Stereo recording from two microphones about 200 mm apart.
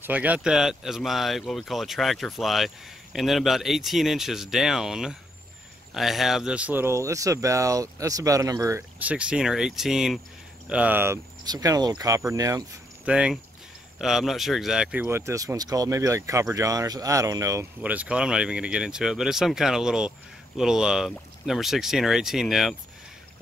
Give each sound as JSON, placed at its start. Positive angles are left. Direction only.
{"t": 0.0, "sound": "speech", "side_deg": -10}
{"t": 13.0, "sound": "speech", "side_deg": -5}